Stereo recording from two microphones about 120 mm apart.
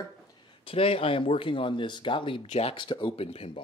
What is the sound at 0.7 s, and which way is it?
Speech, 50° left (ahead or behind).